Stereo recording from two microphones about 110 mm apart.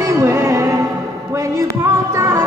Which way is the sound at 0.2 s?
25° right (ahead or behind).